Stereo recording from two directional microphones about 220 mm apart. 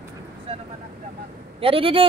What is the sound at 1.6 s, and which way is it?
Speech, 25° right (ahead or behind).